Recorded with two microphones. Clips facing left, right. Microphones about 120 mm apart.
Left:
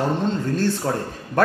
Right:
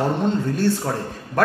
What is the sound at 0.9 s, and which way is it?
Speech, centre (ahead or behind).